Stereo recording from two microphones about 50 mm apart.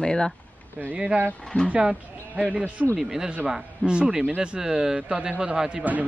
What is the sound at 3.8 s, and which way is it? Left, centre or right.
Speech, right.